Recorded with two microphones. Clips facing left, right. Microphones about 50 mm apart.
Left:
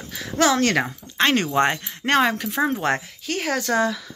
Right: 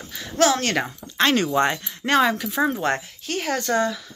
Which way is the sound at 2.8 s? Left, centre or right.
Left.